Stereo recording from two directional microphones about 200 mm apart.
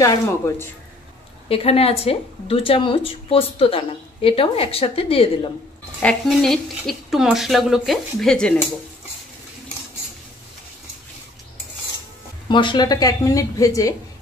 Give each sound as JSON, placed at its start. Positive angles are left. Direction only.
{"t": 0.0, "sound": "speech", "side_deg": 15}
{"t": 1.5, "sound": "a woman's voice", "side_deg": 30}
{"t": 6.0, "sound": "speech", "side_deg": 0}
{"t": 12.4, "sound": "speech", "side_deg": 25}